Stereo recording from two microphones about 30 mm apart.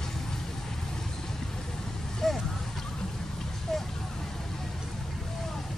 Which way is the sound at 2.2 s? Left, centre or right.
Centre.